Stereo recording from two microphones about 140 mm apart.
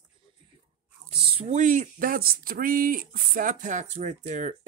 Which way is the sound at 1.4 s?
60° right (ahead or behind).